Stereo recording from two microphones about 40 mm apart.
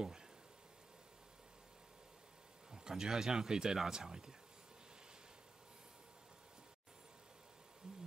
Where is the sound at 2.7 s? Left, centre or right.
Centre.